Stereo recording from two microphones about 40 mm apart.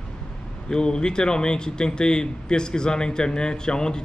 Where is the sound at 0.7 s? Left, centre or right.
Left.